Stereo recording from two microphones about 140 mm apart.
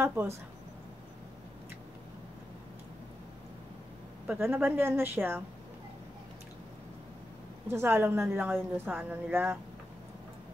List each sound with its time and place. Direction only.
0.0 s a woman's voice: 15° right (ahead or behind)
4.3 s a woman's voice: 15° right (ahead or behind)
7.7 s a woman's voice: 15° right (ahead or behind)